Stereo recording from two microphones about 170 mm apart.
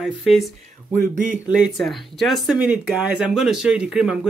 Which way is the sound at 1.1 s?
50° right (ahead or behind).